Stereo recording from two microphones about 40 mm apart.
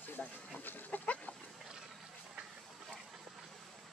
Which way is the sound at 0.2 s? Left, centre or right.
Left.